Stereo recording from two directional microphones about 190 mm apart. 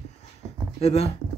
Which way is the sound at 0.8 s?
35° left (ahead or behind).